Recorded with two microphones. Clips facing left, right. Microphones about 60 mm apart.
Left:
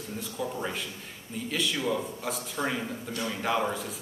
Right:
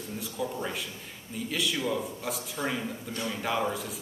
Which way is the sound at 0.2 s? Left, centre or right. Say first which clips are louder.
Even; centre.